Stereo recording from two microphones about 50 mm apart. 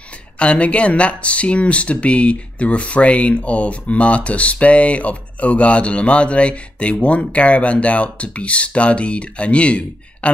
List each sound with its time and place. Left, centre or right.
0.4 s speech: left